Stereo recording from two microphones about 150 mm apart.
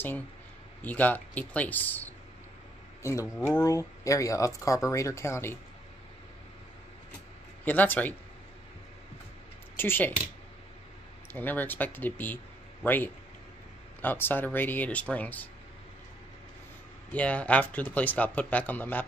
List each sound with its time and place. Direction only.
0.8 s speech: 10° left (ahead or behind)
7.6 s speech: 10° left (ahead or behind)
9.8 s speech: 15° left (ahead or behind)
11.3 s speech: 10° left (ahead or behind)
17.1 s speech: 10° left (ahead or behind)